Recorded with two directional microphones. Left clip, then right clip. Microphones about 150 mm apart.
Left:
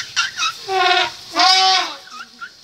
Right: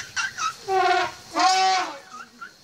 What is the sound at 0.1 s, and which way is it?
Fowl, centre (ahead or behind).